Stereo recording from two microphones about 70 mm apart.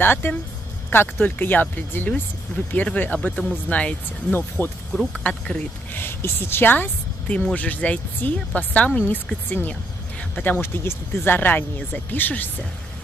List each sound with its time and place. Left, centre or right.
0.0 s speech: left
5.2 s speech: centre
5.9 s speech: left
10.6 s speech: left